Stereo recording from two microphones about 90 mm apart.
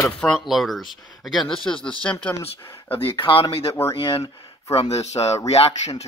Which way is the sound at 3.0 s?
85° left.